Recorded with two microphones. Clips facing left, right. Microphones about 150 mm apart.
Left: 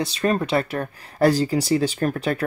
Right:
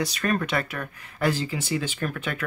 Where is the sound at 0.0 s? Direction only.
25° left (ahead or behind).